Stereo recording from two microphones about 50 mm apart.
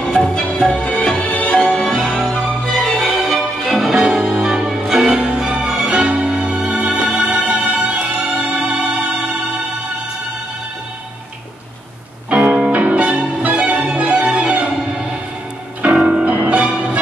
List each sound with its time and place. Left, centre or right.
0.1 s music: centre
1.7 s music: centre
3.0 s music: centre
4.0 s music: centre
12.3 s music: right
16.0 s music: centre